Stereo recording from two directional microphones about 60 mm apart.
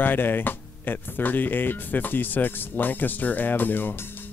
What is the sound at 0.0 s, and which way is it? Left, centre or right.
Speech, left.